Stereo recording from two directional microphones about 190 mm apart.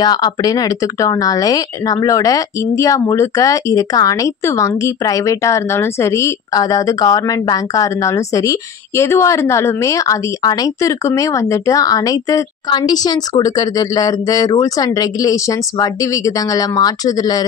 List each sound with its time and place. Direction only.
0.0 s speech: 20° left (ahead or behind)